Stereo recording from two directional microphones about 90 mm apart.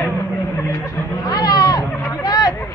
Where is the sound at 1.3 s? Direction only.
45° left (ahead or behind).